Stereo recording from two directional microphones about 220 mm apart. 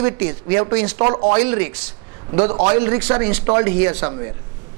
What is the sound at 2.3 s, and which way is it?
Speech, 30° right (ahead or behind).